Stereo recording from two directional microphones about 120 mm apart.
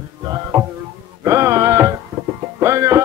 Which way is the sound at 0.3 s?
25° right (ahead or behind).